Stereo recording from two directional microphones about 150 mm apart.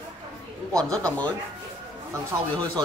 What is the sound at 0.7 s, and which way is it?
Speech, 5° left (ahead or behind).